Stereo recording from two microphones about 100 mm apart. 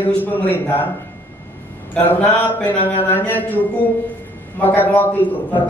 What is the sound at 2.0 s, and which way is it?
A man's voice, 15° left (ahead or behind).